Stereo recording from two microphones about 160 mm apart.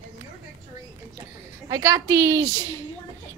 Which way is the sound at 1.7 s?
20° right (ahead or behind).